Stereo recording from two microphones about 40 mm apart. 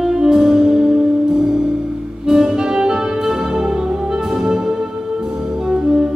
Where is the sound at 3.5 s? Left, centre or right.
Centre.